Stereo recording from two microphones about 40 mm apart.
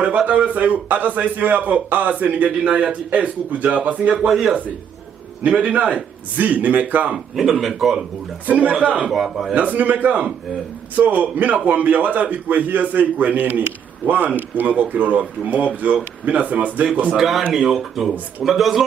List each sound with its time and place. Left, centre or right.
0.3 s a man's voice: right
4.3 s speech: centre
5.4 s a man's voice: right
7.3 s speech: centre
8.5 s a man's voice: right
9.1 s speech: centre
9.6 s a man's voice: right
17.5 s speech: centre